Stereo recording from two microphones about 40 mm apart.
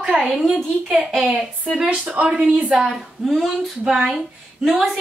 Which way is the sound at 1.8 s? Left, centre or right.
Right.